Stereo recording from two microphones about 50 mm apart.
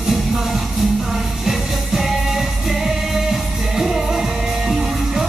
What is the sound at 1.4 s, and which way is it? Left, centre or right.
Music, centre.